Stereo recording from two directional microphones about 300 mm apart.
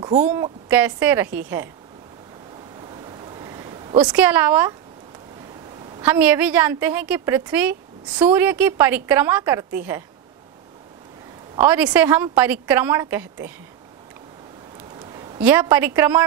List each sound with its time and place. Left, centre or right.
0.0 s a woman's voice: right
0.3 s a woman's voice: centre
2.8 s a sound: centre
4.0 s a woman's voice: centre
5.9 s a woman's voice: centre
11.5 s a woman's voice: centre
15.1 s a sound: centre
15.4 s a woman's voice: centre